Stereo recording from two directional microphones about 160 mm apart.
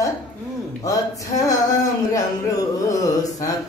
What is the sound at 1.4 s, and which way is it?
Music, 20° left (ahead or behind).